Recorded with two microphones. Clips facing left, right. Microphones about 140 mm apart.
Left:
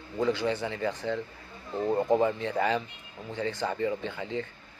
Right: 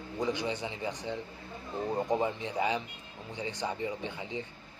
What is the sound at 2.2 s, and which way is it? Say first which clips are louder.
Speech: left 4 dB; 15° right (ahead or behind).